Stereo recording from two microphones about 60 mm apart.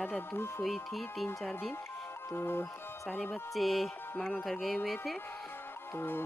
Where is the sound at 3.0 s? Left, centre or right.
Left.